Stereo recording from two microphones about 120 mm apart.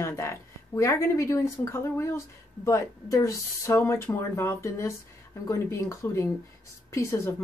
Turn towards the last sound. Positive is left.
turn(degrees=20)  # may be behind; listen again after turning